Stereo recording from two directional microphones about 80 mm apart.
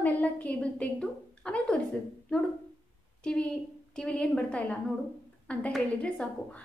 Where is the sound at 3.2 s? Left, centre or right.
Centre.